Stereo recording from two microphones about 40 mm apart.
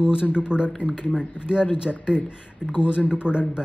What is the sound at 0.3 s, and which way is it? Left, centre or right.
Speech, right.